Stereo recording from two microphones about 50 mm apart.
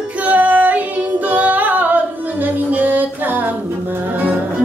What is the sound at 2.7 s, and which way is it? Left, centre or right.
Music, right.